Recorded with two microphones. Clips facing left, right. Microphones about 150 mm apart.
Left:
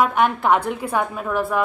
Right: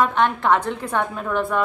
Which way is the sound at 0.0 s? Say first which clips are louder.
Left 1 dB; 10° left (ahead or behind).